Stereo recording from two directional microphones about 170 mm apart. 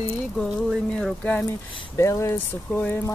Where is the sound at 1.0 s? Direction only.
5° left (ahead or behind).